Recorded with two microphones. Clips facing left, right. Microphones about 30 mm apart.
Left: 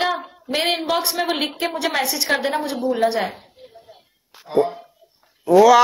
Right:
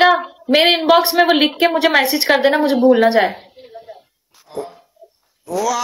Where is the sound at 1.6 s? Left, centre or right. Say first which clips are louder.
Right 9 dB; centre.